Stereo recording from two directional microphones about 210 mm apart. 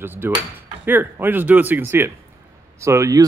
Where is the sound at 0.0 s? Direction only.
10° right (ahead or behind).